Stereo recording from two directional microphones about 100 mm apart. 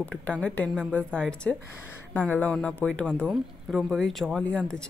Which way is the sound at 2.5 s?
10° left (ahead or behind).